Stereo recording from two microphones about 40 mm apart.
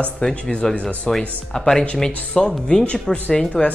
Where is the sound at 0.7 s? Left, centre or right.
Left.